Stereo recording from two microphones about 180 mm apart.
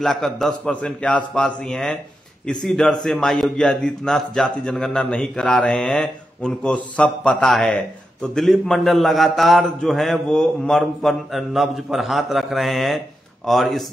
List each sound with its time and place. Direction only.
0.0 s a man's voice: centre (ahead or behind)